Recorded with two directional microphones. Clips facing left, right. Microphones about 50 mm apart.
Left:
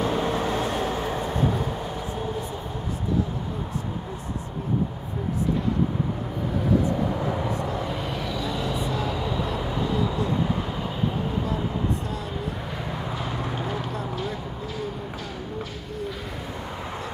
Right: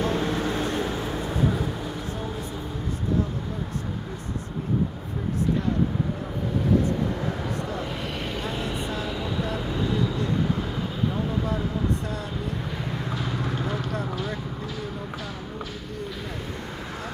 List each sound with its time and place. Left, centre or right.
0.0 s vehicle: centre; by 1.0 s left
1.0 s vehicle: centre
7.2 s vehicle: centre
8.4 s vehicle: right
9.1 s vehicle: centre
9.5 s vehicle: centre
12.9 s vehicle: centre